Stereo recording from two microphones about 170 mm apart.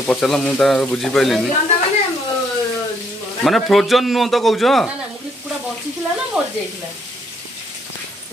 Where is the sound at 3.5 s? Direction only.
Centre (ahead or behind).